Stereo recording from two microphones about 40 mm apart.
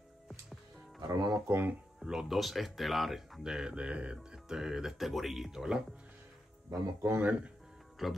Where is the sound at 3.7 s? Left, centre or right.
Right.